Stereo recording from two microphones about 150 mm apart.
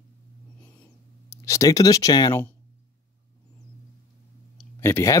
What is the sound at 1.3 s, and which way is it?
Speech, 20° left (ahead or behind).